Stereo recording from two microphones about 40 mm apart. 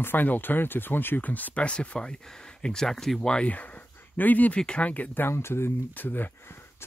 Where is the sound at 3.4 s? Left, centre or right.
Left.